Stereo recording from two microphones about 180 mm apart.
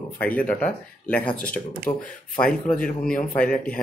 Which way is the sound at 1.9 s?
25° left (ahead or behind).